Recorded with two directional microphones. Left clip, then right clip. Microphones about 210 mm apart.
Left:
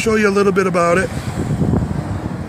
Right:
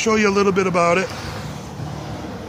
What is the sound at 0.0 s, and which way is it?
Speech, 15° left (ahead or behind).